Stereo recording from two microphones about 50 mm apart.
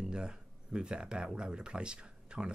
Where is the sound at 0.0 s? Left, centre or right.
Centre.